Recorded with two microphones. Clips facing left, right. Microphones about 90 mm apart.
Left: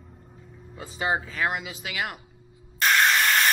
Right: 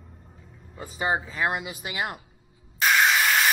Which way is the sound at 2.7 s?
5° right (ahead or behind).